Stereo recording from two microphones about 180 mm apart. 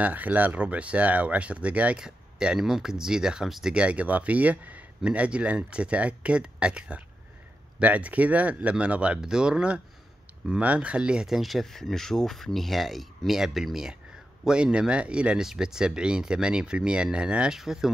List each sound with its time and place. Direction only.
0.0 s speech: 10° right (ahead or behind)